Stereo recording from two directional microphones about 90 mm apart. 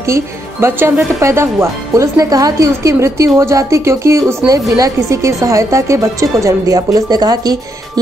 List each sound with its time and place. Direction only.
0.1 s speech: 30° right (ahead or behind); by 8.0 s 45° right (ahead or behind)